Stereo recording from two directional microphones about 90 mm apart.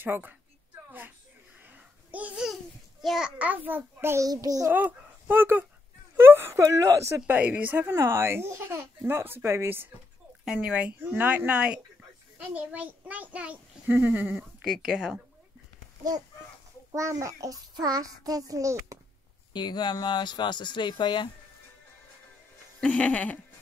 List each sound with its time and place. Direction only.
0.0 s speech: 20° right (ahead or behind)
1.7 s a sound: 15° right (ahead or behind)
3.0 s a child's voice: 5° right (ahead or behind); by 4.3 s 30° right (ahead or behind)
4.3 s a child's voice: 40° right (ahead or behind)
4.6 s speech: 20° right (ahead or behind)
6.1 s a sound: 25° right (ahead or behind)
6.6 s a child's voice: 35° right (ahead or behind)
7.2 s speech: 20° right (ahead or behind)
7.8 s speech: 30° right (ahead or behind)
10.4 s a child's voice: 10° right (ahead or behind)
16.9 s a child's voice: 35° right (ahead or behind)
19.5 s speech: 55° left (ahead or behind)
22.8 s music: 15° left (ahead or behind)